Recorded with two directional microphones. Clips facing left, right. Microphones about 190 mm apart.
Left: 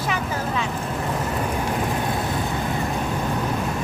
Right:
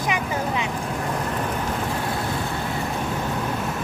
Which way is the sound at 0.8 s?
Centre (ahead or behind).